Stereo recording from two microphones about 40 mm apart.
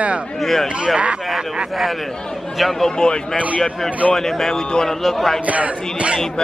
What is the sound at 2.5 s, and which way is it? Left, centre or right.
Speech, centre.